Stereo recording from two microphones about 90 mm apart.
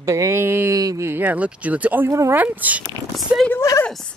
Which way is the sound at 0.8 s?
40° right (ahead or behind).